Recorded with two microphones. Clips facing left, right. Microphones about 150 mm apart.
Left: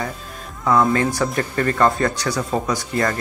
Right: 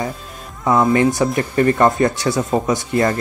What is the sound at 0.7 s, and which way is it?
Speech, 20° right (ahead or behind).